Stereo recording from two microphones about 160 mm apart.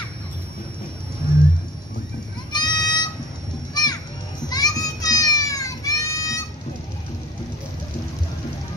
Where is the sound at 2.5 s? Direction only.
25° left (ahead or behind).